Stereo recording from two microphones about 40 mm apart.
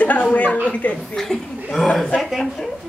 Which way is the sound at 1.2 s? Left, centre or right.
Centre.